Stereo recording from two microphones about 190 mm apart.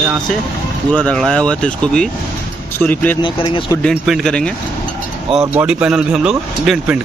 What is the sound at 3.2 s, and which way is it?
Speech, 25° left (ahead or behind).